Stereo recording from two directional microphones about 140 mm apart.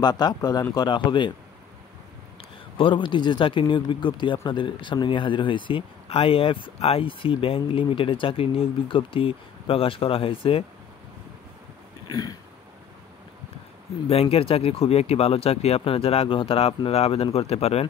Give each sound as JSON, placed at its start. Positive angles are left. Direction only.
{"t": 0.0, "sound": "speech", "side_deg": 30}
{"t": 2.8, "sound": "speech", "side_deg": 35}
{"t": 12.1, "sound": "speech", "side_deg": 25}
{"t": 14.0, "sound": "speech", "side_deg": 45}